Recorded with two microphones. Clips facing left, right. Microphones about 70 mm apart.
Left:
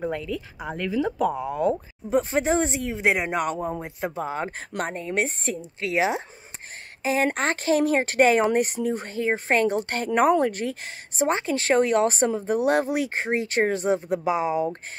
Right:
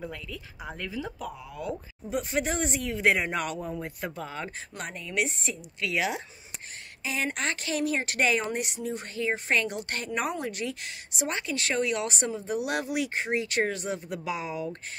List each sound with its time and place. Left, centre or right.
0.0 s speech: left
0.7 s a woman's voice: left
4.6 s a woman's voice: left